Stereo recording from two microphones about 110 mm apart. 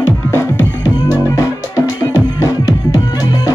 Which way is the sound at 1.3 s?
30° left (ahead or behind).